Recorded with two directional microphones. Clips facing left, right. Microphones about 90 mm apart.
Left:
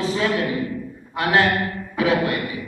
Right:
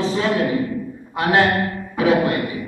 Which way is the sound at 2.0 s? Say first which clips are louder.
Right 3 dB; 25° right (ahead or behind).